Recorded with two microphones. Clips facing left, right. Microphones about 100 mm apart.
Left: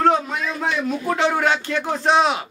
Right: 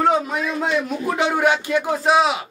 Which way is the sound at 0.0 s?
5° right (ahead or behind).